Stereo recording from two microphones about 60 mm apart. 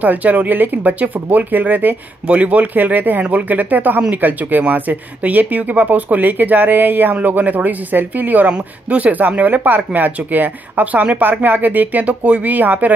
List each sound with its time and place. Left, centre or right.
0.0 s speech: right